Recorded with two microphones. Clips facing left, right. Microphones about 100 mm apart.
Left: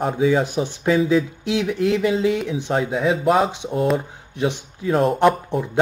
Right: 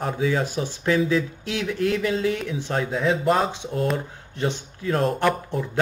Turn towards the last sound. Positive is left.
turn(degrees=20)  # may be behind; listen again after turning